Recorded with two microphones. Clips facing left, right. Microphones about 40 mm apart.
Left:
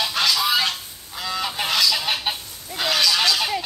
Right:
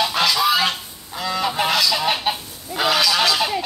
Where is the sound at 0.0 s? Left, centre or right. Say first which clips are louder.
Right 3 dB; centre.